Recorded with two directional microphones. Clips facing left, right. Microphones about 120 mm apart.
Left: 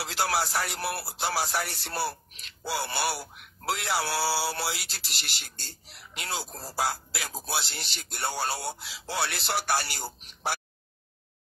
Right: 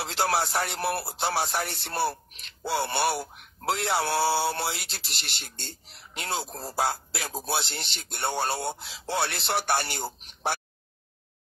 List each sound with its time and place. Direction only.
0.0 s speech: 25° right (ahead or behind)